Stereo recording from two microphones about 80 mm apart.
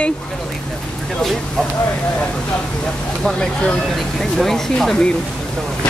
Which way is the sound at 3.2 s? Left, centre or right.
Centre.